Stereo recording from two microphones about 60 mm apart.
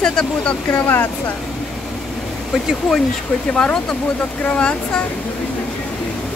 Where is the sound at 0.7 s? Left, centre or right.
Left.